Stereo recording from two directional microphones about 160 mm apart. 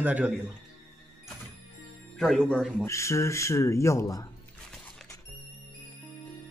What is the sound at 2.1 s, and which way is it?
Speech, centre (ahead or behind).